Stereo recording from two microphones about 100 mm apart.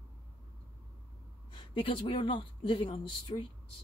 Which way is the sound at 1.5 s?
60° left (ahead or behind).